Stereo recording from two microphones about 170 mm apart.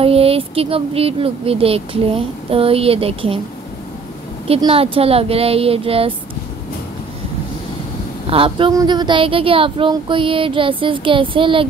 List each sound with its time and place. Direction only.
0.0 s speech: 35° right (ahead or behind)
4.5 s speech: 35° right (ahead or behind)
8.3 s speech: 30° right (ahead or behind)